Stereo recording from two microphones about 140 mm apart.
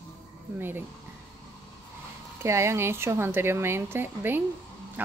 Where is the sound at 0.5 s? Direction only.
15° right (ahead or behind).